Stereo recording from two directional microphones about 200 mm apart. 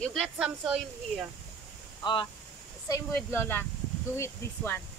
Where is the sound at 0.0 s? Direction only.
Centre (ahead or behind).